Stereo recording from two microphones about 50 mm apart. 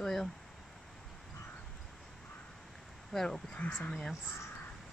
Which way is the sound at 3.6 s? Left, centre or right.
Left.